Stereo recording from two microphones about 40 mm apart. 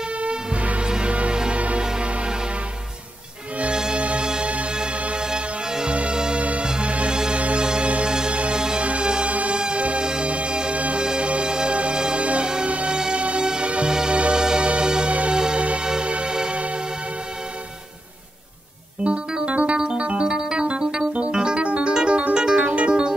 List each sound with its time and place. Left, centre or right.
0.2 s music: right
0.8 s music: right
3.7 s music: centre
4.0 s music: right
7.6 s music: centre
9.3 s music: right
15.6 s music: right
19.0 s keyboard: right
20.2 s keyboard: centre
21.9 s music: right